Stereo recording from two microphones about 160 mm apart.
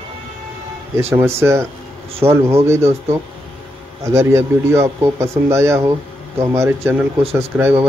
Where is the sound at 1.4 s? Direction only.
15° right (ahead or behind).